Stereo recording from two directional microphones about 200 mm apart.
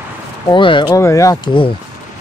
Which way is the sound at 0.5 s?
25° left (ahead or behind).